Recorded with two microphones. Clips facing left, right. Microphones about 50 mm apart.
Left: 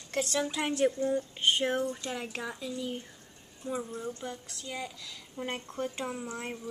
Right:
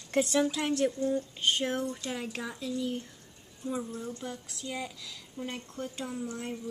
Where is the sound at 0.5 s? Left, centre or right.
Centre.